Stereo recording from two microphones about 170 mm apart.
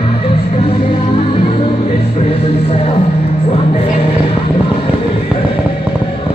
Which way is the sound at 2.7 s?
40° left (ahead or behind).